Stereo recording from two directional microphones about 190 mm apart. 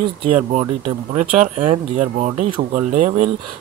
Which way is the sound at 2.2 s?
40° right (ahead or behind).